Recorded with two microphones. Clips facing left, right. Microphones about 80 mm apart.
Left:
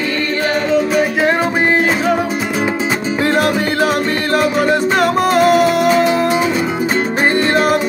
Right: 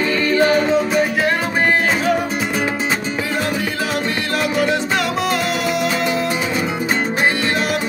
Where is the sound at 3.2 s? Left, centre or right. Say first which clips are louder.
Left 7 dB; left.